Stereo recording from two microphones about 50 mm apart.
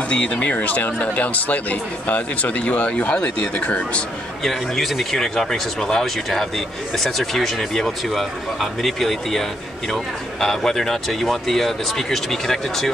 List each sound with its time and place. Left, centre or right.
0.1 s speech: left
4.4 s speech: centre